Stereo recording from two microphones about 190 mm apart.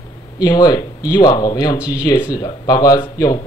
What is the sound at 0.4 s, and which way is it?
Speech, 20° left (ahead or behind).